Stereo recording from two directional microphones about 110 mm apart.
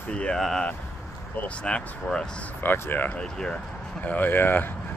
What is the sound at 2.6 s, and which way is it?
Speech, 20° left (ahead or behind).